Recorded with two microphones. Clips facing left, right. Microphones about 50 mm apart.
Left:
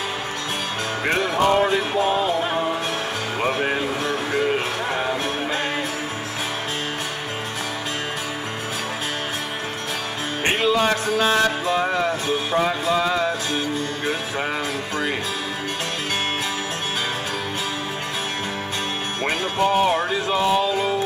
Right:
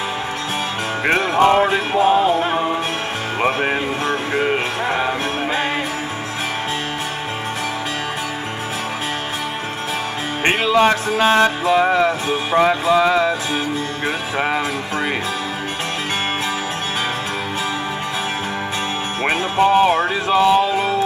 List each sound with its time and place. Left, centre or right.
1.0 s music: right
10.4 s music: right
14.0 s music: right
19.6 s music: right